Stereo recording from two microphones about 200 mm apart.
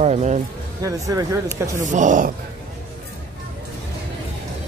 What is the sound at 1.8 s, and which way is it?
Speech, 40° right (ahead or behind).